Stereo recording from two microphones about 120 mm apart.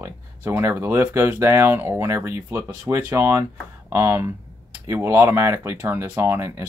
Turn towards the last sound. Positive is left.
turn(degrees=-25)  # may be behind; listen again after turning